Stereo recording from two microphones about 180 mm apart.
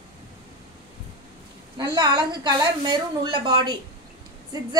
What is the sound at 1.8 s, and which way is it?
A woman's voice, 25° right (ahead or behind).